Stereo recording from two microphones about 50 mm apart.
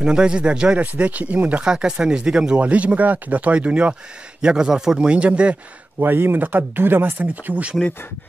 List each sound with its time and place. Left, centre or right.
0.0 s speech: centre
1.6 s speech: centre
5.9 s speech: right